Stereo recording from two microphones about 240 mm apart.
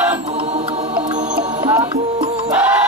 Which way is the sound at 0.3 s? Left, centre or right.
Right.